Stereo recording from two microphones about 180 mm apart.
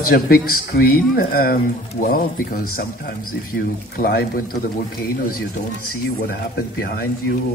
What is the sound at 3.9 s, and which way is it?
Speech, 55° left (ahead or behind).